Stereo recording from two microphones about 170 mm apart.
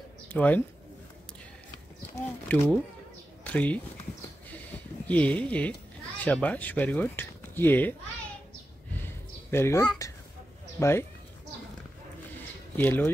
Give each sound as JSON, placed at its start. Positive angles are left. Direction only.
{"t": 0.3, "sound": "speech", "side_deg": 10}
{"t": 2.1, "sound": "speech", "side_deg": 10}
{"t": 4.5, "sound": "a sound", "side_deg": 10}
{"t": 6.2, "sound": "speech", "side_deg": 10}
{"t": 9.5, "sound": "speech", "side_deg": 15}
{"t": 12.7, "sound": "speech", "side_deg": 10}